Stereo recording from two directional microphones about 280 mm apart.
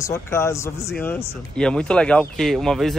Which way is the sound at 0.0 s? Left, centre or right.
Centre.